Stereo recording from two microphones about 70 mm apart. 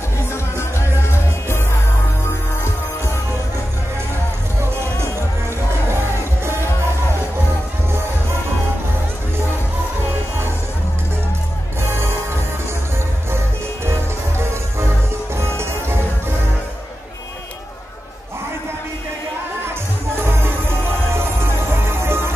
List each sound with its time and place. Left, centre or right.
0.3 s music: left
14.4 s music: right
21.8 s music: right